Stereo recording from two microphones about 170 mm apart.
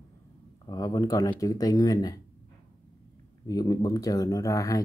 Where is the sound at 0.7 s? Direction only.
20° left (ahead or behind).